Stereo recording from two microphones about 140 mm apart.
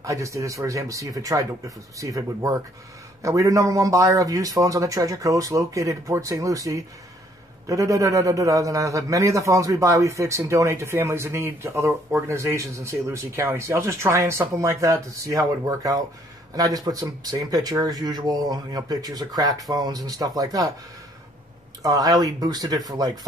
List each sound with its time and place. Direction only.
0.0 s a man's voice: 20° right (ahead or behind)
21.8 s a man's voice: 25° right (ahead or behind)